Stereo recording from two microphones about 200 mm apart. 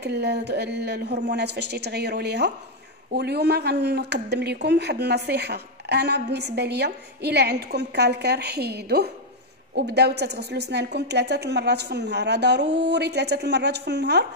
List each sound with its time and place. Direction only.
0.0 s speech: 55° right (ahead or behind)